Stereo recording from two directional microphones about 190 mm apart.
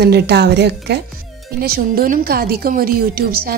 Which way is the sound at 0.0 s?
60° right (ahead or behind).